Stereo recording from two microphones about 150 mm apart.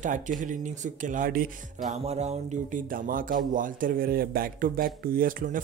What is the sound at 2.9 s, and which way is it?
Speech, 65° right (ahead or behind).